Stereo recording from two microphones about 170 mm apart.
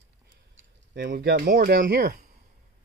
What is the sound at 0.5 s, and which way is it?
Speech, 75° right (ahead or behind).